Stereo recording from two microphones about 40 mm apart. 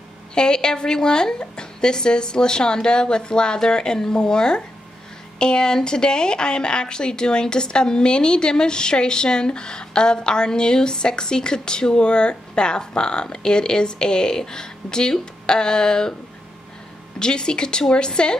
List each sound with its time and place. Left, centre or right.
0.3 s speech: left
17.2 s speech: centre